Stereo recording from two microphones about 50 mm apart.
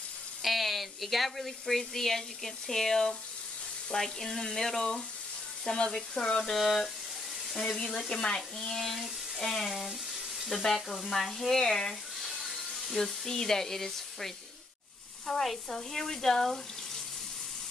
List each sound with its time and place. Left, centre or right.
0.4 s speech: centre
3.9 s frying: centre
6.5 s speech: centre
7.5 s frying: centre
8.1 s speech: centre
9.8 s water tap: centre
10.5 s frying: centre